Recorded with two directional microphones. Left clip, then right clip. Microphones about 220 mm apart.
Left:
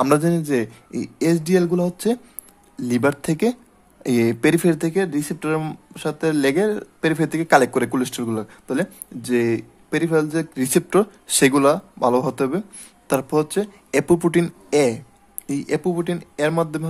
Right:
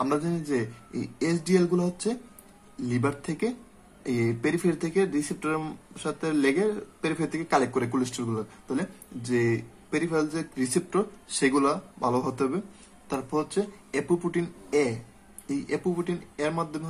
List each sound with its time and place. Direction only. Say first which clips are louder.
0.0 s speech: left 10 dB; 45° left (ahead or behind)